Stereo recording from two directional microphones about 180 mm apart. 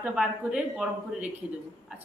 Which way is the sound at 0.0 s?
5° right (ahead or behind).